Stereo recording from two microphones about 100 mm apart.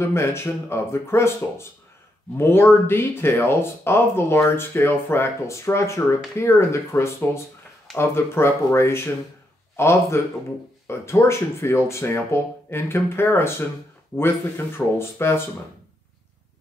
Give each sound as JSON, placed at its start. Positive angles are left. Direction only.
{"t": 0.0, "sound": "speech", "side_deg": 25}
{"t": 15.0, "sound": "speech", "side_deg": 25}